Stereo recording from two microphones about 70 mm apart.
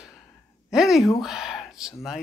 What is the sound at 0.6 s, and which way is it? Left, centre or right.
Speech, centre.